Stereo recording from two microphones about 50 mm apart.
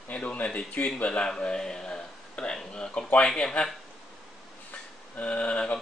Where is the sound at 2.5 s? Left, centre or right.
Centre.